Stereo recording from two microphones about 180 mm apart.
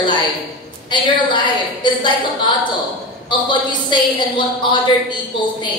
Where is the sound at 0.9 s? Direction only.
25° left (ahead or behind).